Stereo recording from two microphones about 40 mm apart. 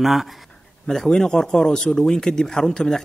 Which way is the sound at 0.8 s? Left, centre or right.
Centre.